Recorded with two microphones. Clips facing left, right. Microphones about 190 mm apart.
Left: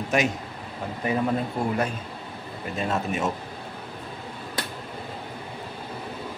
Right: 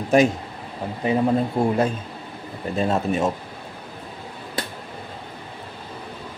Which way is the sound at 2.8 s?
35° right (ahead or behind).